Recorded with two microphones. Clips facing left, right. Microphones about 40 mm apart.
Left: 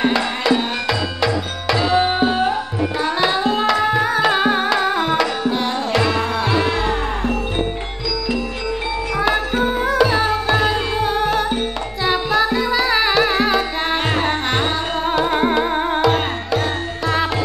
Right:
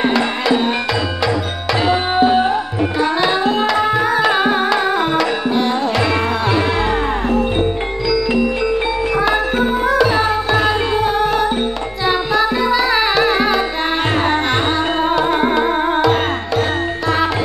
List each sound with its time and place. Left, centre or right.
0.0 s music: centre
9.7 s music: centre